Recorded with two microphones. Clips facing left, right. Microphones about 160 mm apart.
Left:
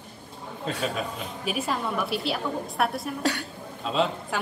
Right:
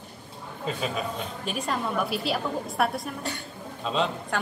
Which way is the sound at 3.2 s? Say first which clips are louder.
Left 7 dB; 75° left (ahead or behind).